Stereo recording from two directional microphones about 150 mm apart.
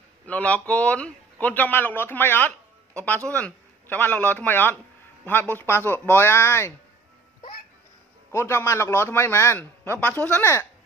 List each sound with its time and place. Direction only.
0.3 s a man's voice: 10° left (ahead or behind)
8.3 s a man's voice: 15° left (ahead or behind)